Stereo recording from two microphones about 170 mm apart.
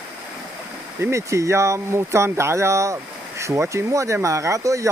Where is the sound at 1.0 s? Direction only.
15° right (ahead or behind).